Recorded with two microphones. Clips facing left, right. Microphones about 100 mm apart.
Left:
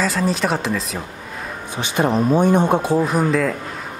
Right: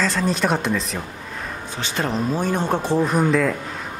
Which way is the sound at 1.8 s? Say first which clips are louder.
Left 6 dB; 15° left (ahead or behind).